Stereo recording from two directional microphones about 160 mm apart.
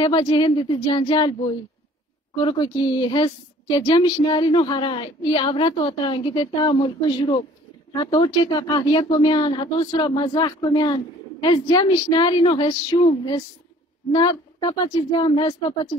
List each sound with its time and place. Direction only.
0.0 s a woman's voice: 25° left (ahead or behind)